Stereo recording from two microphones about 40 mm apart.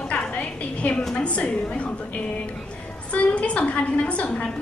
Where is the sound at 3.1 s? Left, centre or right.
Left.